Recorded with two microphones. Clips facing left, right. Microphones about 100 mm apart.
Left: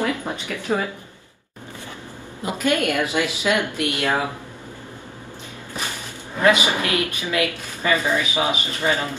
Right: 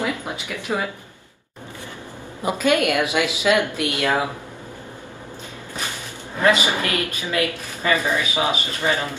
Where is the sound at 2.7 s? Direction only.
20° right (ahead or behind).